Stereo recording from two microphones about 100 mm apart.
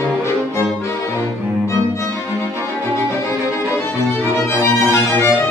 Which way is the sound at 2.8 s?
25° left (ahead or behind).